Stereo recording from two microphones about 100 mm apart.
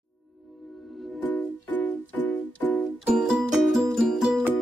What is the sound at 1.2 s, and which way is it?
Music, 15° left (ahead or behind).